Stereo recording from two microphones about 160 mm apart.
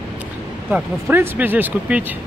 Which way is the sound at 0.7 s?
10° right (ahead or behind).